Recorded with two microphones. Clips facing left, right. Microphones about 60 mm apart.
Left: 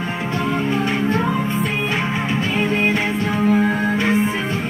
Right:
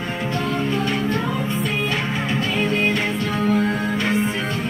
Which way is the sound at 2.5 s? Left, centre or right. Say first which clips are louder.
Left 2 dB; left.